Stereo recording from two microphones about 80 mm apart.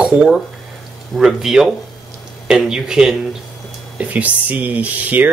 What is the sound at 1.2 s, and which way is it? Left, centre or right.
Speech, centre.